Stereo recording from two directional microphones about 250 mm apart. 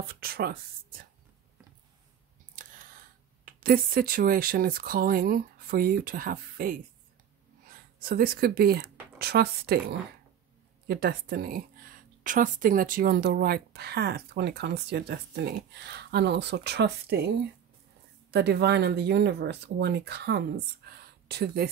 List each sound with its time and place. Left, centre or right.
0.0 s speech: right
2.5 s a sound: right
3.4 s a woman's voice: right
18.3 s speech: right